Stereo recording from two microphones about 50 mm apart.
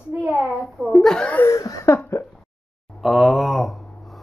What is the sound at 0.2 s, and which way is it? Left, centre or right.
Speech, right.